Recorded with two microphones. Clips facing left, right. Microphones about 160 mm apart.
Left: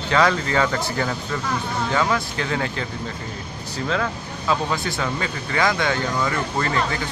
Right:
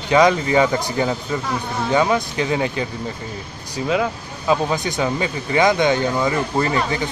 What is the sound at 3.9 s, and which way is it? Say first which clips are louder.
Speech: right 4 dB; 15° right (ahead or behind).